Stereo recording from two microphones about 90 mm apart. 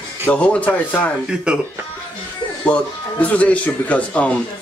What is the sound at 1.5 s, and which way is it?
Speech, 10° right (ahead or behind).